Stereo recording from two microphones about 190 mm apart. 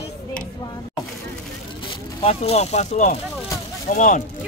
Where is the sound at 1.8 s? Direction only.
30° left (ahead or behind).